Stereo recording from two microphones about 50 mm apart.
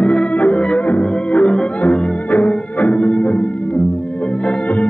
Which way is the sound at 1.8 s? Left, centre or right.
Left.